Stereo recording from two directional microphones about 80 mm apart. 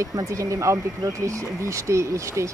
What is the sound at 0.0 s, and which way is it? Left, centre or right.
Speech, right.